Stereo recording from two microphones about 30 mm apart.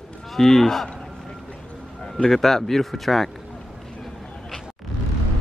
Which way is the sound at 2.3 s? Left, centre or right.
Centre.